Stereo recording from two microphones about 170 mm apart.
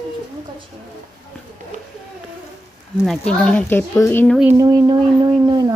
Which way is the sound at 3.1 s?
5° left (ahead or behind).